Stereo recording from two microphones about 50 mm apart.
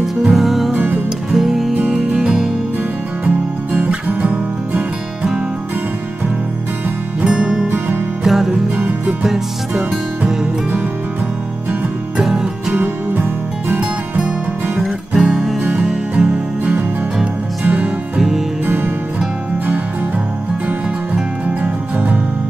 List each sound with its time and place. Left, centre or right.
0.3 s music: centre
0.7 s music: right
1.3 s music: centre
3.3 s music: right
7.2 s music: centre
12.2 s music: centre
12.8 s music: right
13.7 s music: centre
14.8 s music: centre
17.6 s music: right
20.6 s music: right